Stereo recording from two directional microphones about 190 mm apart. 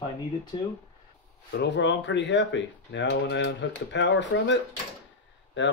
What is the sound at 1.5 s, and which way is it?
Speech, 65° left (ahead or behind).